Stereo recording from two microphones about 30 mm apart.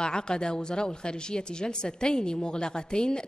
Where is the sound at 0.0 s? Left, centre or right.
Left.